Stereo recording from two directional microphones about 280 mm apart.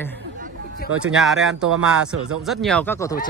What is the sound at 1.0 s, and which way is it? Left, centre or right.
Speech, centre.